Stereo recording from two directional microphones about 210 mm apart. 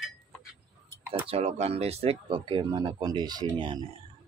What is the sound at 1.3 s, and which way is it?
Speech, 30° right (ahead or behind).